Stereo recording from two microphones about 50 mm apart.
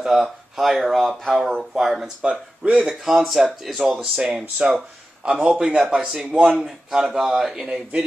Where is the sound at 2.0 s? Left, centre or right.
Centre.